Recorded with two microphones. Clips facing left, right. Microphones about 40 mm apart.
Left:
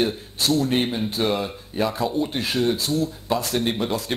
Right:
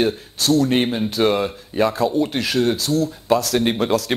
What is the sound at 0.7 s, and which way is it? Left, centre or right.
Speech, right.